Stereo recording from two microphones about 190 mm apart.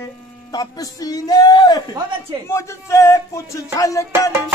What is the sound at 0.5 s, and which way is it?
Speech, 20° left (ahead or behind).